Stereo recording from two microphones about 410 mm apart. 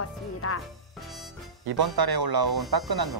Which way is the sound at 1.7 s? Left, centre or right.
Right.